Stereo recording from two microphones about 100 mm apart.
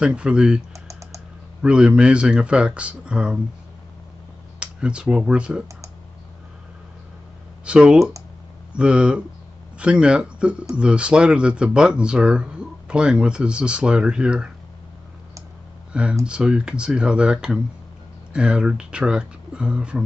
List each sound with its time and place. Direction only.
0.0 s speech: 10° right (ahead or behind)
0.7 s typing: 30° right (ahead or behind)
1.6 s speech: 10° right (ahead or behind)
4.6 s speech: 10° right (ahead or behind)
7.6 s speech: 10° right (ahead or behind)
15.9 s speech: 10° right (ahead or behind)